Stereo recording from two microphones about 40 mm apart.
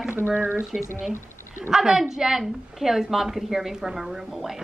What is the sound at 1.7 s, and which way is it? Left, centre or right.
A woman's voice, centre.